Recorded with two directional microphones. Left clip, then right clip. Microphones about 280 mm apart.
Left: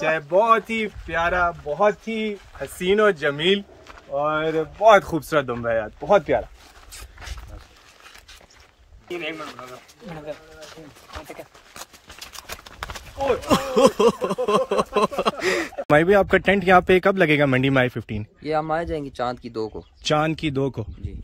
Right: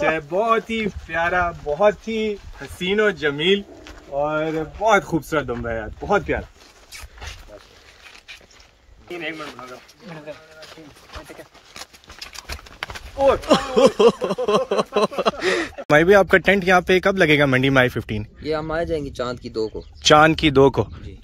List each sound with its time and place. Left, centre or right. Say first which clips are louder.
0.1 s speech: left 2 dB; centre
2.8 s speech: left 1 dB; centre
9.1 s speech: even; centre
11.7 s a sound: right 3 dB; centre
13.5 s speech: right 2 dB; centre
18.5 s speech: left 1 dB; centre
20.0 s speech: right 9 dB; centre